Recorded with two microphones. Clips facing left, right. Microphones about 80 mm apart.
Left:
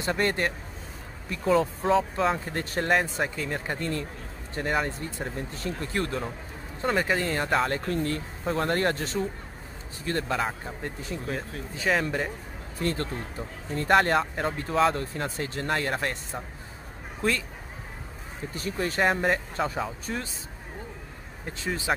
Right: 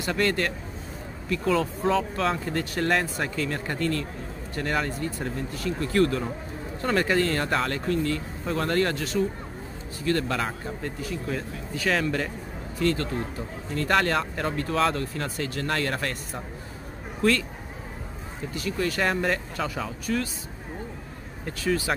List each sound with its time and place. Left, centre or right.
0.0 s speech: left
1.8 s speech: centre
2.3 s speech: left
2.9 s speech: centre
6.9 s speech: centre
7.9 s speech: left
10.0 s speech: left
12.7 s speech: left
17.2 s speech: centre
18.5 s speech: left
21.5 s speech: left